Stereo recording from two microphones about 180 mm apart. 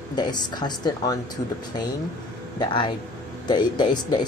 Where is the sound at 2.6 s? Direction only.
25° left (ahead or behind).